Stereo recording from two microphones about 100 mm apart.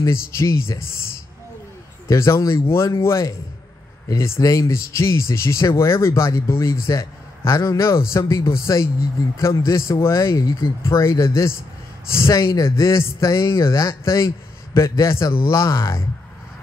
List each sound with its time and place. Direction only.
0.0 s speech: 30° left (ahead or behind)
2.0 s speech: 30° left (ahead or behind)